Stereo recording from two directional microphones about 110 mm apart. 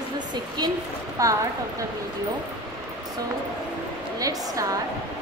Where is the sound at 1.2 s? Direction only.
30° right (ahead or behind).